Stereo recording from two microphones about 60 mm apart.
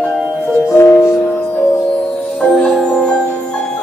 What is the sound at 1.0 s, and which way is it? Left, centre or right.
Music, left.